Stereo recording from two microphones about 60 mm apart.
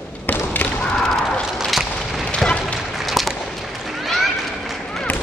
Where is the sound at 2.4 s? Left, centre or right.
Centre.